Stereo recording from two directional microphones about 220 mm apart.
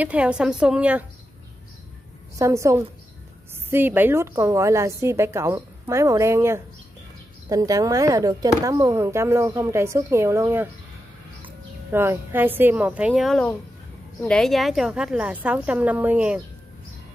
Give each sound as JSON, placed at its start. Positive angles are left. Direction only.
{"t": 0.0, "sound": "a woman's voice", "side_deg": -5}
{"t": 2.3, "sound": "a woman's voice", "side_deg": -15}
{"t": 11.9, "sound": "a woman's voice", "side_deg": -10}